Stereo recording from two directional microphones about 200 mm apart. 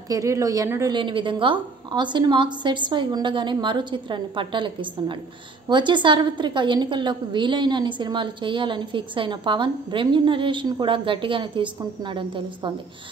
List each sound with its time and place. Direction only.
0.1 s a woman's voice: 15° right (ahead or behind)